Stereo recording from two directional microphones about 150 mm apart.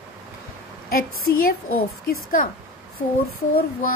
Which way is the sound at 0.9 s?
75° left (ahead or behind).